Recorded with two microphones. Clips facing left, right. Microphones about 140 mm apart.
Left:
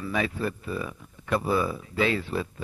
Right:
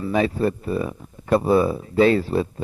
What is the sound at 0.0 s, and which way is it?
Speech, 30° right (ahead or behind).